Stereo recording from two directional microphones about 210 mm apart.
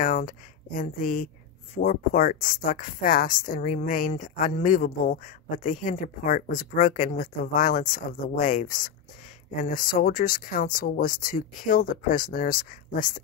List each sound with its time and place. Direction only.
0.0 s speech: 40° left (ahead or behind)